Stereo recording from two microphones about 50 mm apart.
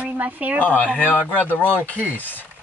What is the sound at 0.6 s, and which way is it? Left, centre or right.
Speech, left.